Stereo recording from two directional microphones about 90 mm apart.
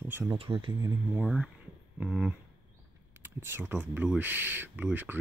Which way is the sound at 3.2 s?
25° right (ahead or behind).